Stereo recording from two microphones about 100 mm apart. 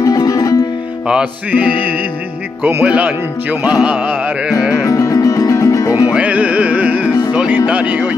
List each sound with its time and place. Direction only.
0.0 s music: 35° left (ahead or behind)
1.0 s music: 10° right (ahead or behind)
4.8 s music: 30° left (ahead or behind)
6.1 s music: 15° right (ahead or behind)